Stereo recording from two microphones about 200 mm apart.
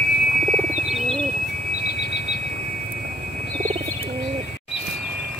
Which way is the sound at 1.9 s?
55° left (ahead or behind).